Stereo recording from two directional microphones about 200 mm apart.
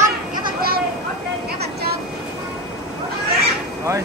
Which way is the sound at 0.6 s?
50° right (ahead or behind).